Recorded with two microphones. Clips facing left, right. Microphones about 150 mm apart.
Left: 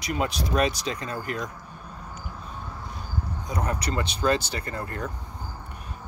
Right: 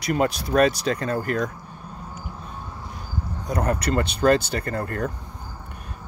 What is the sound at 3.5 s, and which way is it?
Speech, 60° right (ahead or behind).